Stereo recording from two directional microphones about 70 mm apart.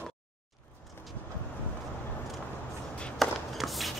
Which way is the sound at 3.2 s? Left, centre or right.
Centre.